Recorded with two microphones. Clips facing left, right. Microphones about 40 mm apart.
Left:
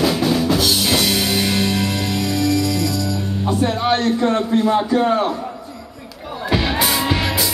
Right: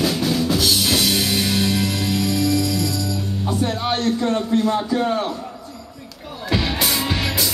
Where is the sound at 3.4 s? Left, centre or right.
Left.